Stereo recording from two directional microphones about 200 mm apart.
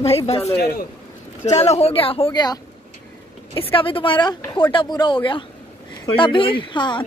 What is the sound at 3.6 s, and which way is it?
Speech, 25° left (ahead or behind).